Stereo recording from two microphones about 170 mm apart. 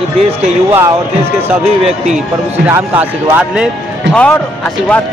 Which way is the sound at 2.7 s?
10° right (ahead or behind).